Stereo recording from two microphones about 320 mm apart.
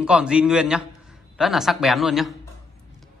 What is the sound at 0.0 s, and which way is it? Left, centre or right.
A man's voice, centre.